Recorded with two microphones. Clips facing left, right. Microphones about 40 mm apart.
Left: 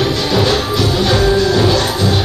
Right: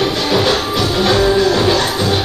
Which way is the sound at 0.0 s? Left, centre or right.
Centre.